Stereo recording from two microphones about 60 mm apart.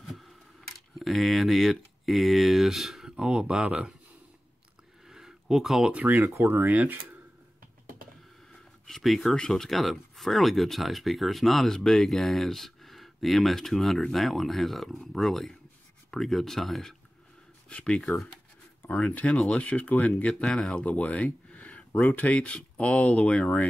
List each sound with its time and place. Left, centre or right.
0.7 s speech: centre
3.3 s speech: centre
5.0 s a sound: centre
6.0 s speech: right
6.3 s speech: right
6.7 s speech: right
8.8 s speech: centre
17.6 s speech: centre
17.9 s speech: centre
18.9 s speech: left
20.8 s speech: left